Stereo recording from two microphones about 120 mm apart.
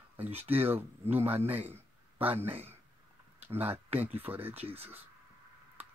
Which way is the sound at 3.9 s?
15° right (ahead or behind).